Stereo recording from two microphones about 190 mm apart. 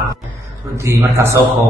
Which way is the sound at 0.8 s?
15° right (ahead or behind).